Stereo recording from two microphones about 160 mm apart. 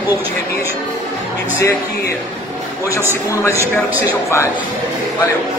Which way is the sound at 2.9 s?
15° right (ahead or behind).